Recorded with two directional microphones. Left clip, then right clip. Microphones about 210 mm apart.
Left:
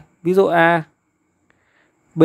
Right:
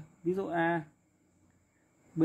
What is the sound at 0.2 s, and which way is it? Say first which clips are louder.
Speech: left 17 dB; 50° left (ahead or behind).